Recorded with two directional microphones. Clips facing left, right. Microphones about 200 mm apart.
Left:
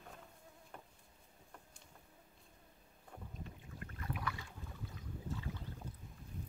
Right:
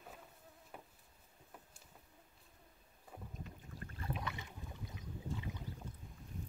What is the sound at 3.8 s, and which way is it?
Boat, 25° right (ahead or behind).